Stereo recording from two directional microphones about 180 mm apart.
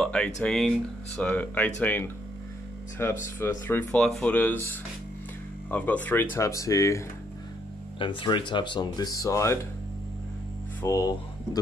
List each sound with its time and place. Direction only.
0.0 s a sound: 5° left (ahead or behind)
0.4 s speech: 5° left (ahead or behind)
8.0 s speech: 25° left (ahead or behind)
10.8 s speech: 15° left (ahead or behind)